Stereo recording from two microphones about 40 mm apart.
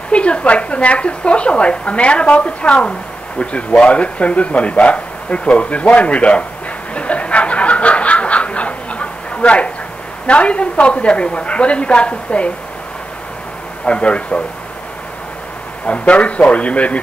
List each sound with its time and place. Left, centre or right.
0.1 s a woman's voice: left
6.9 s snicker: left
10.2 s a woman's voice: left
13.8 s a woman's voice: left
15.9 s speech: left